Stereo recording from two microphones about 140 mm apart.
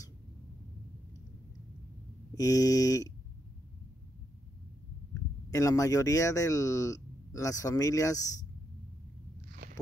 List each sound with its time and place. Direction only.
2.3 s speech: 25° left (ahead or behind)
5.5 s speech: 20° left (ahead or behind)
9.6 s walk: 75° right (ahead or behind)